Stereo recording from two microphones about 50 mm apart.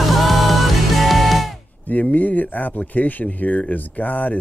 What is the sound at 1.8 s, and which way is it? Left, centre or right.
Speech, left.